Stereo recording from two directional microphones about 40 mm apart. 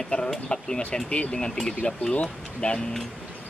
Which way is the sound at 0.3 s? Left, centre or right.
Left.